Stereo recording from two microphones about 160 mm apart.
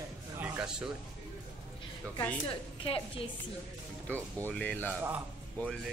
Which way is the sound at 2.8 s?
35° left (ahead or behind).